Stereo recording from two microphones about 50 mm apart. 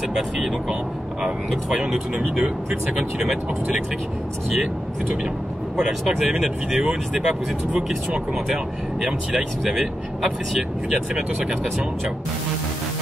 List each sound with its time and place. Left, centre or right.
0.1 s speech: centre
5.8 s speech: centre
6.4 s speech: centre
9.0 s speech: centre